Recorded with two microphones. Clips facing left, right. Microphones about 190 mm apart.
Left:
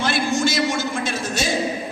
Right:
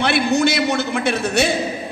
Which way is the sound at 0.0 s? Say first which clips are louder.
Right 4 dB; 65° right (ahead or behind).